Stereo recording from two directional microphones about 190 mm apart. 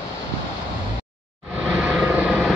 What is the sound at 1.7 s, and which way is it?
Vehicle, centre (ahead or behind).